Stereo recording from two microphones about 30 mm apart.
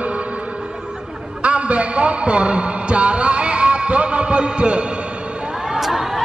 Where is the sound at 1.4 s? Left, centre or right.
Right.